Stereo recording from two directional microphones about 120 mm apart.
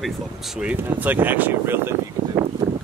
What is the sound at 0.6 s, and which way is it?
Speech, 15° right (ahead or behind).